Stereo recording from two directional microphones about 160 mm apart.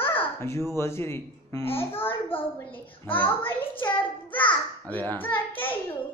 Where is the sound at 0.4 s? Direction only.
15° left (ahead or behind).